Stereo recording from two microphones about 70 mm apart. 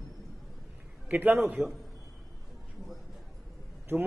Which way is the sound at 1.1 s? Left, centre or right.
Right.